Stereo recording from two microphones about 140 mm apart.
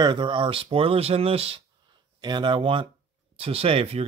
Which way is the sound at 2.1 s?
30° right (ahead or behind).